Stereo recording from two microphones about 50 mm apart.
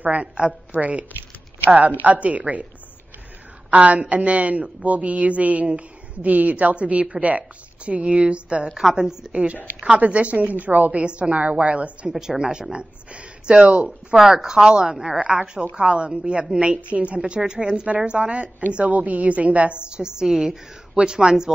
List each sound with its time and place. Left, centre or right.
0.0 s a woman's voice: right
3.7 s a woman's voice: right
9.8 s a woman's voice: right
12.1 s a woman's voice: centre
14.2 s a woman's voice: centre